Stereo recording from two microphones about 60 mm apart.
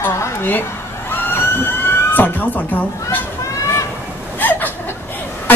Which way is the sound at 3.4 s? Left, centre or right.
Left.